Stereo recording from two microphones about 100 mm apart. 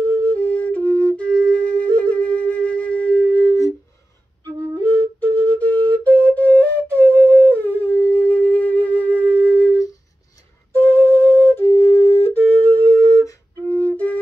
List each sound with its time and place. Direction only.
0.2 s flute: 15° left (ahead or behind)
5.5 s flute: 15° left (ahead or behind)